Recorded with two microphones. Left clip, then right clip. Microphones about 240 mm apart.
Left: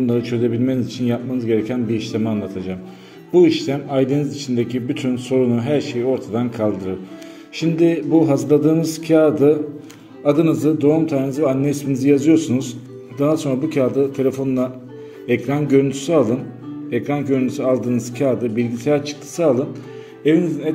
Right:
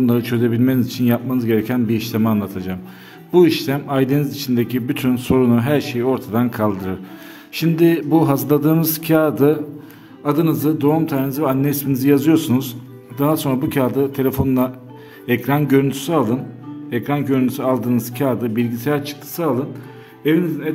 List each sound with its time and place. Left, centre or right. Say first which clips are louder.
0.0 s a man's voice: right 1 dB; right
0.4 s a man's voice: right 1 dB; right
0.7 s a man's voice: right 3 dB; right; by 20.7 s centre